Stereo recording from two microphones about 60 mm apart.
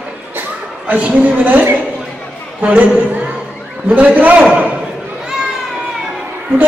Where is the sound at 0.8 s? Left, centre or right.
Right.